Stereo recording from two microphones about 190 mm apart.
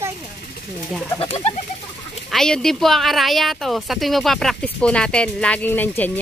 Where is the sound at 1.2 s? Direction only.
30° left (ahead or behind).